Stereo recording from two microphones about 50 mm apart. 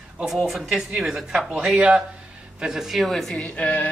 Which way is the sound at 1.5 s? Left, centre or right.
Centre.